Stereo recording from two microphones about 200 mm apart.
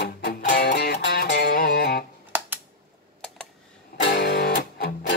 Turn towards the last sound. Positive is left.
turn(degrees=50)  # may be behind; listen again after turning